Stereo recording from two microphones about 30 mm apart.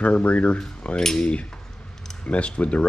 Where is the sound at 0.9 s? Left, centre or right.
Left.